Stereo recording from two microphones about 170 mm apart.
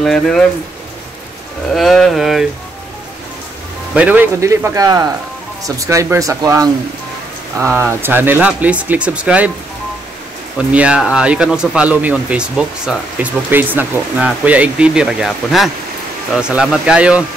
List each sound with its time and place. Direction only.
0.0 s speech: 5° left (ahead or behind)
1.7 s speech: centre (ahead or behind)
3.9 s speech: 10° right (ahead or behind)
10.7 s speech: 5° right (ahead or behind)